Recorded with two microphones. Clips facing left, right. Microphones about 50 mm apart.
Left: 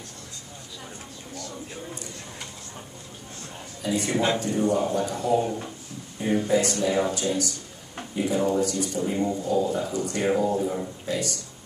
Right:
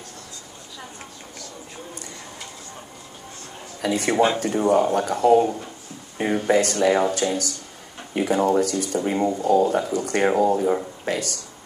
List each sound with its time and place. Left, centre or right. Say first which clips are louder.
3.9 s speech: right 4 dB; right